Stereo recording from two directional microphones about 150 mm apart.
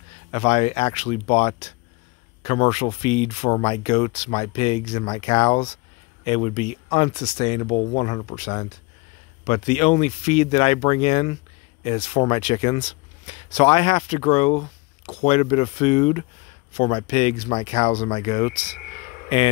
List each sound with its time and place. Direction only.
0.3 s speech: 45° left (ahead or behind)